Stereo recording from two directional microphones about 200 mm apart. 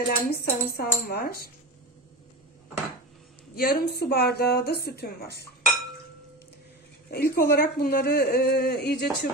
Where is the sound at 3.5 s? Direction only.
45° left (ahead or behind).